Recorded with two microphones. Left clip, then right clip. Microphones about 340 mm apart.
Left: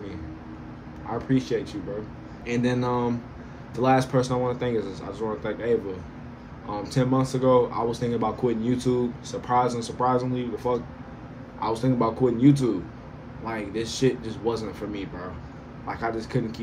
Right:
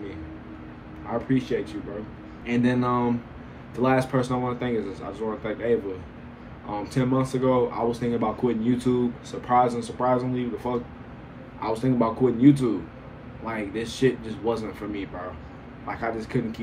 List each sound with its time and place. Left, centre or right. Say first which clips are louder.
1.1 s speech: even; centre